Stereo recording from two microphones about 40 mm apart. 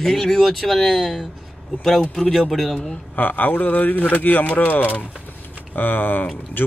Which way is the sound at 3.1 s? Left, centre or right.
Left.